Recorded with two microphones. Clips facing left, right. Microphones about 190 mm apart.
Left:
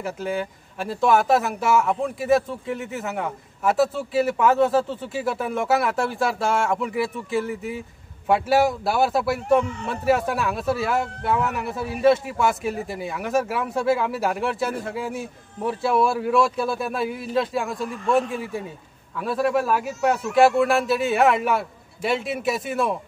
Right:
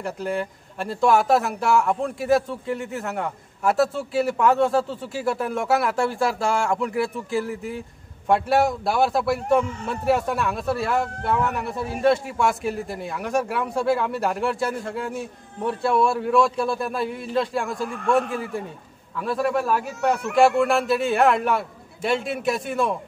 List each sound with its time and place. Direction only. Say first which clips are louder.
0.0 s speech: even; centre (ahead or behind)
17.8 s a man's voice: right 1 dB; 55° right (ahead or behind)
19.1 s speech: left 1 dB; centre (ahead or behind)